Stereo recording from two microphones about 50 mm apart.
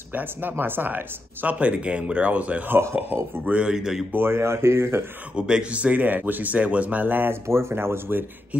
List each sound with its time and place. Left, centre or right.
0.1 s speech: right
3.7 s speech: centre
4.1 s speech: right
4.4 s speech: right
5.3 s speech: right
7.4 s speech: right